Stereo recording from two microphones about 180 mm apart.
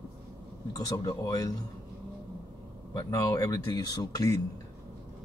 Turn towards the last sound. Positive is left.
turn(degrees=20)  # may be behind; listen again after turning